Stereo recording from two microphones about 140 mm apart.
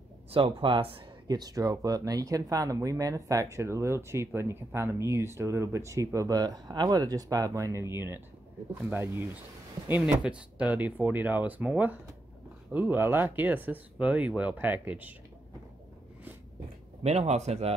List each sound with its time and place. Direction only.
0.3 s speech: 40° right (ahead or behind); by 7.9 s 20° right (ahead or behind)
8.9 s speech: 15° right (ahead or behind)
17.0 s speech: 50° right (ahead or behind)